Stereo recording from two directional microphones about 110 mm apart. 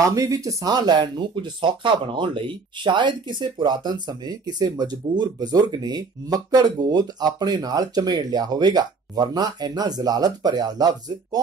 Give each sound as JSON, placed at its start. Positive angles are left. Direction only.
{"t": 0.0, "sound": "speech", "side_deg": -30}